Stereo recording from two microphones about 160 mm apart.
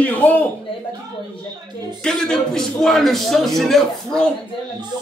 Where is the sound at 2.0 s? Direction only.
5° left (ahead or behind).